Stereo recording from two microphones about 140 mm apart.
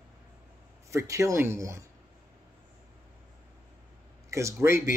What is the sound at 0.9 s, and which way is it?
Speech, 20° right (ahead or behind).